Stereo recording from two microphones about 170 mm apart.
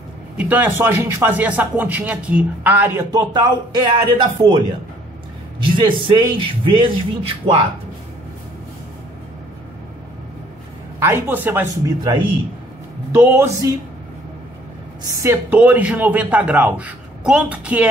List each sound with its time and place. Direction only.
0.4 s speech: 10° right (ahead or behind); by 4.6 s 30° right (ahead or behind)
5.6 s a man's voice: 30° right (ahead or behind)
11.0 s speech: 15° right (ahead or behind)
15.0 s speech: 15° right (ahead or behind)